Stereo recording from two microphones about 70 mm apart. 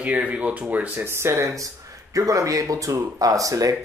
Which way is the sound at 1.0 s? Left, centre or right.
Right.